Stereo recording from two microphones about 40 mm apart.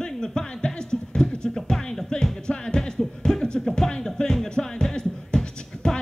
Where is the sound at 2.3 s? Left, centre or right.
Centre.